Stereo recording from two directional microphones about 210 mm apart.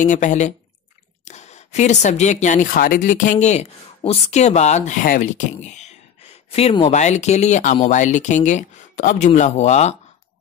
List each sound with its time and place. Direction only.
0.0 s speech: 35° left (ahead or behind)